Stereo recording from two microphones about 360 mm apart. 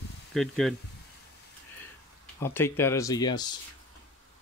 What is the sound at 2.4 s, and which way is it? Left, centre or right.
Speech, centre.